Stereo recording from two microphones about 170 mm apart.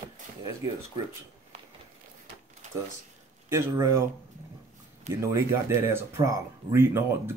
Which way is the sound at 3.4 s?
15° right (ahead or behind).